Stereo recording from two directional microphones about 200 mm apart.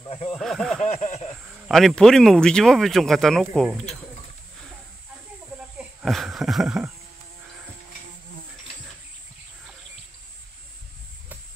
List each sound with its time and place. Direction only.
0.3 s speech: 5° left (ahead or behind)
0.8 s a sound: 35° left (ahead or behind)
1.7 s speech: centre (ahead or behind)
5.8 s speech: centre (ahead or behind)